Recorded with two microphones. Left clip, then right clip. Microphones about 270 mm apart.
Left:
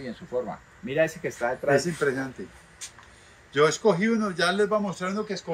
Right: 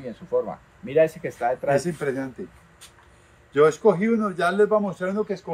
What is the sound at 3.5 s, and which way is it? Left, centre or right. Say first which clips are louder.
A man's voice: right 3 dB; right.